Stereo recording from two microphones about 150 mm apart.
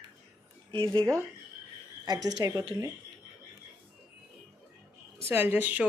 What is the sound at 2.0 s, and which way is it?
Speech, 25° right (ahead or behind).